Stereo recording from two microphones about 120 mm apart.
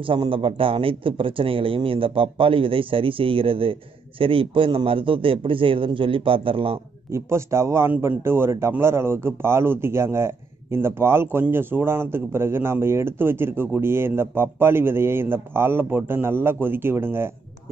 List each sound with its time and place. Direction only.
0.0 s a man's voice: 45° right (ahead or behind)
7.1 s speech: 25° right (ahead or behind)